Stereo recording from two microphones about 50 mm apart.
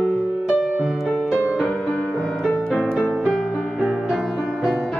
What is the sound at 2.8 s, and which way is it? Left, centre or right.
Music, centre.